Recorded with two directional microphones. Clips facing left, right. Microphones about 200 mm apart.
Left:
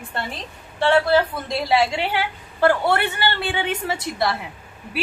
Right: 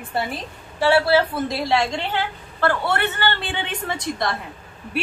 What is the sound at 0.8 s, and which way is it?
A woman's voice, 5° right (ahead or behind).